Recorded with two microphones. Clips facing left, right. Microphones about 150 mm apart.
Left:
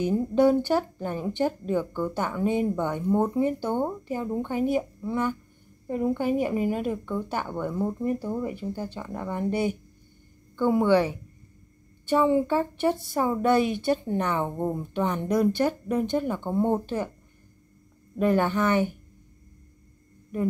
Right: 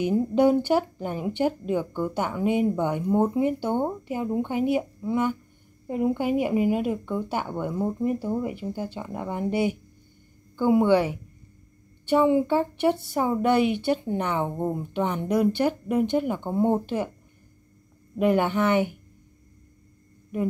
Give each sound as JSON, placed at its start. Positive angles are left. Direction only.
{"t": 0.3, "sound": "speech", "side_deg": -15}
{"t": 18.1, "sound": "speech", "side_deg": -15}